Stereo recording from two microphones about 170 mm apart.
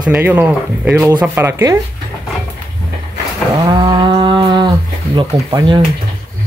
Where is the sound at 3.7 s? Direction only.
25° right (ahead or behind).